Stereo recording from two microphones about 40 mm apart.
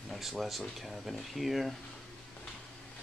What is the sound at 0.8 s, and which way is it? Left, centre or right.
Speech, centre.